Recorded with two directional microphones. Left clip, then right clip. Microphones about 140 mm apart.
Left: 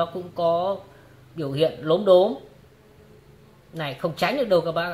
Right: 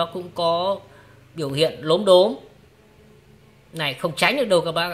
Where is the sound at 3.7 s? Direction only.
25° right (ahead or behind).